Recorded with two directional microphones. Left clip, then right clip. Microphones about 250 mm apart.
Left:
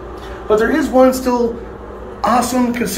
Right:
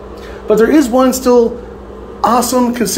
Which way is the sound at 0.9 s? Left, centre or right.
Right.